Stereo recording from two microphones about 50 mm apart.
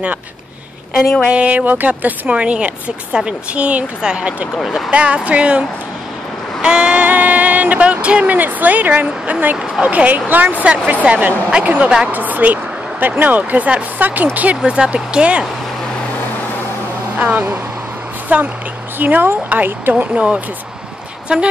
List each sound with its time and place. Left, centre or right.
1.3 s speech: right
4.6 s vehicle: centre
4.9 s speech: right
6.6 s a sound: centre
7.1 s vehicle: right
8.4 s speech: right
14.6 s speech: centre
17.2 s a woman's voice: right